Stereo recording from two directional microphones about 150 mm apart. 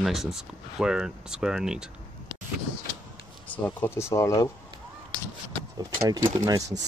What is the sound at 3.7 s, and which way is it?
Speech, 15° left (ahead or behind).